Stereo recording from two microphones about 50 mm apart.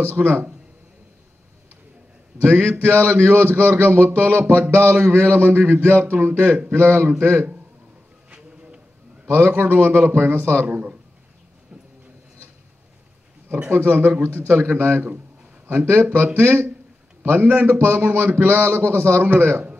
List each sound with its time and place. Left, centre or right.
0.0 s speech: right
2.8 s speech: right
4.1 s a man's voice: right
6.0 s speech: right
9.2 s a man's voice: right
10.4 s speech: right
13.7 s speech: right
17.2 s a man's voice: right